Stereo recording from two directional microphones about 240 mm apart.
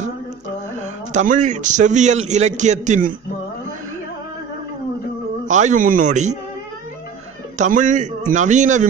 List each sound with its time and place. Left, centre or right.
0.7 s a man's voice: right
5.5 s speech: right
7.5 s speech: right